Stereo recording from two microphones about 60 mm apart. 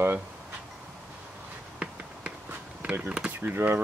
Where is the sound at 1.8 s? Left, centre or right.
Right.